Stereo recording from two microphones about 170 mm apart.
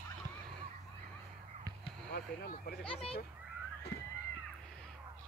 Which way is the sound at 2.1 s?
65° left (ahead or behind).